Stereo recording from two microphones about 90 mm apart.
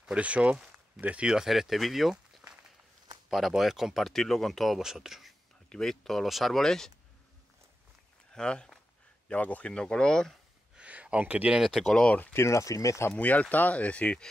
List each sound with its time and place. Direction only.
0.0 s speech: 15° right (ahead or behind); by 6.9 s 5° left (ahead or behind)
8.4 s speech: 10° left (ahead or behind)
10.8 s a sound: 15° right (ahead or behind)
11.6 s speech: centre (ahead or behind)
12.4 s speech: 35° left (ahead or behind)
13.1 s speech: 15° left (ahead or behind)